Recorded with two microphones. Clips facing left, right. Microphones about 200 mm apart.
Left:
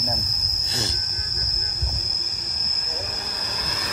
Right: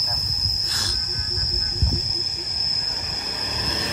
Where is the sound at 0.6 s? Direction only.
25° left (ahead or behind).